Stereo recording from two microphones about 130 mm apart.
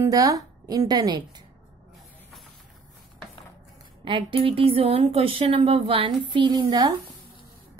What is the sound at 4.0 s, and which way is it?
A woman's voice, 40° right (ahead or behind).